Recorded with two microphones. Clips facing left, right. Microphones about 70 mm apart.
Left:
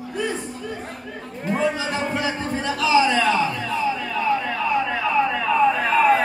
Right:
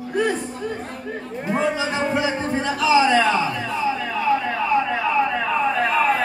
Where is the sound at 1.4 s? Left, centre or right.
Centre.